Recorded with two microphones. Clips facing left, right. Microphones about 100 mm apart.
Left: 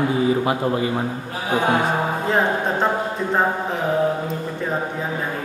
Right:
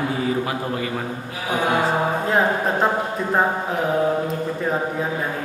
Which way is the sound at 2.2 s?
Centre (ahead or behind).